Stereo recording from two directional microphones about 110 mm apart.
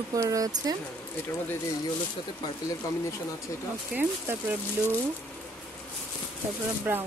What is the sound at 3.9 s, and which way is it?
Speech, 15° right (ahead or behind).